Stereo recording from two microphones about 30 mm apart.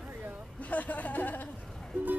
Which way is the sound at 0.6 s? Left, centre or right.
Left.